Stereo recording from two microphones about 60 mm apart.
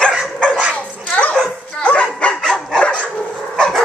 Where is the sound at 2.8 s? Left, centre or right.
Left.